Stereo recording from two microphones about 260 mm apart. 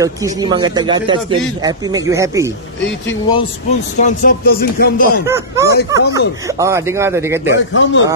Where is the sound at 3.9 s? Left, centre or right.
Left.